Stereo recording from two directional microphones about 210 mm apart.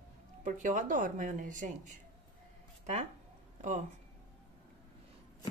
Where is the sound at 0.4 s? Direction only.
35° right (ahead or behind).